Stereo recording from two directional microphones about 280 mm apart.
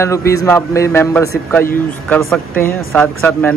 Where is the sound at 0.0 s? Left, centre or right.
Centre.